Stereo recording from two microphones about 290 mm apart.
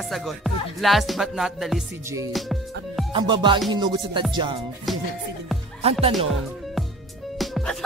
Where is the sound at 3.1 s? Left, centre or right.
Centre.